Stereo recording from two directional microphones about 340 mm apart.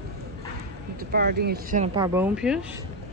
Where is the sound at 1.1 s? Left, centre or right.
Right; by 2.5 s centre.